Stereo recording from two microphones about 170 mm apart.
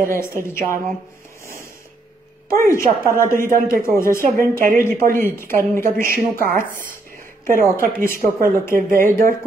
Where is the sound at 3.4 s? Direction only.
55° right (ahead or behind).